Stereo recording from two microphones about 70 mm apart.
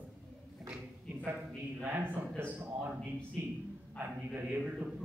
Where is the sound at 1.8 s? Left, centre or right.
Right.